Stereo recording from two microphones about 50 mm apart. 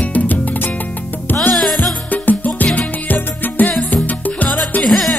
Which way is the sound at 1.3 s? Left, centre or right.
Centre.